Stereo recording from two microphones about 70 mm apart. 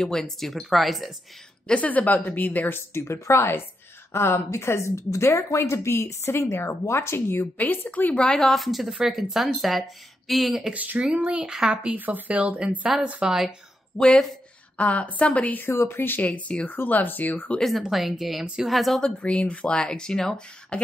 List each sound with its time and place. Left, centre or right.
0.0 s speech: centre
1.7 s speech: left
2.9 s a woman's voice: left; by 10.7 s centre
10.7 s speech: right
13.9 s speech: centre
14.8 s speech: centre
15.6 s a woman's voice: left
16.3 s speech: centre
17.6 s speech: centre
19.1 s speech: centre